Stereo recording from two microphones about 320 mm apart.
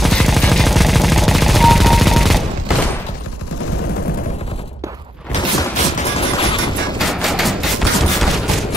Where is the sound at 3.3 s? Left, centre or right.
Left.